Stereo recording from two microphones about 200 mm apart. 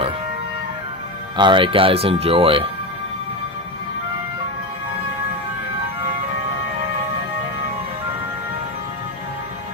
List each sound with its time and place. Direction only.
1.3 s speech: 25° right (ahead or behind)